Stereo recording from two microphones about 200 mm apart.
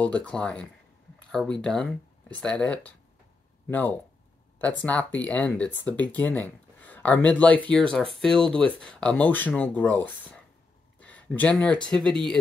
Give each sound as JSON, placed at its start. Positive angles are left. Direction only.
{"t": 0.0, "sound": "speech", "side_deg": 5}
{"t": 4.6, "sound": "speech", "side_deg": 10}